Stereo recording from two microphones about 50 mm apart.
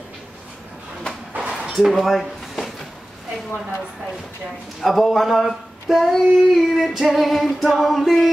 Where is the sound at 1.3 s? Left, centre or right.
Centre.